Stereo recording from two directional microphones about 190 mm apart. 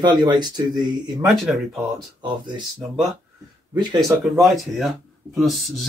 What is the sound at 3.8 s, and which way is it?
Speech, 25° right (ahead or behind).